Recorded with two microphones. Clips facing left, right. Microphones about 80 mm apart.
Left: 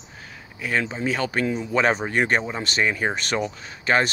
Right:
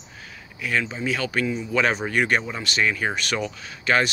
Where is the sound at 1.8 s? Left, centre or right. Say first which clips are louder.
Left 1 dB; left.